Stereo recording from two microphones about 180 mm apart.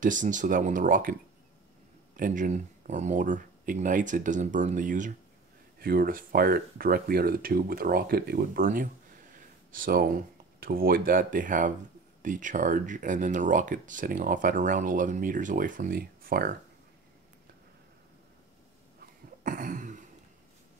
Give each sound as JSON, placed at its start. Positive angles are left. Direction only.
{"t": 0.0, "sound": "speech", "side_deg": -45}
{"t": 2.1, "sound": "speech", "side_deg": -50}
{"t": 19.4, "sound": "a sound", "side_deg": -50}